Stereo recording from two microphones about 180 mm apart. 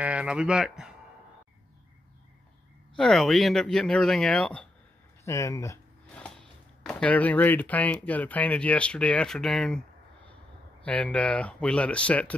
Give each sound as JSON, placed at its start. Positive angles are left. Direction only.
{"t": 0.0, "sound": "speech", "side_deg": -5}
{"t": 3.0, "sound": "speech", "side_deg": 0}
{"t": 5.2, "sound": "speech", "side_deg": 15}
{"t": 6.1, "sound": "speech", "side_deg": 5}
{"t": 10.9, "sound": "speech", "side_deg": 5}